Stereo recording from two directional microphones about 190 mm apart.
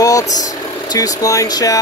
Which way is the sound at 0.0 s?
15° left (ahead or behind).